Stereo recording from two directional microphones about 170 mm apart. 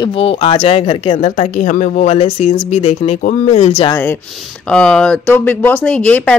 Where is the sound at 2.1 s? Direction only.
35° left (ahead or behind).